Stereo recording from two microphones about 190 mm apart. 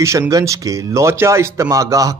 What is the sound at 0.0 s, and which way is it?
A man's voice, 15° right (ahead or behind).